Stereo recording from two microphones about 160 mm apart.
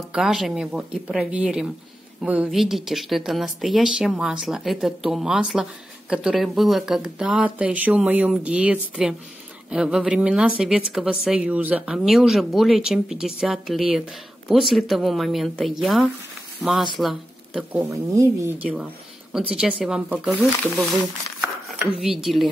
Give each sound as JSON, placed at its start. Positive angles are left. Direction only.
{"t": 0.1, "sound": "speech", "side_deg": 0}
{"t": 17.8, "sound": "speech", "side_deg": -20}